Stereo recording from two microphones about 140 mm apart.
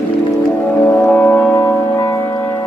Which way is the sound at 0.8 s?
15° left (ahead or behind).